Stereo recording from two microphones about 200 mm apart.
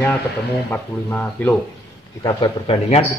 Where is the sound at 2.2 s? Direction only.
25° left (ahead or behind).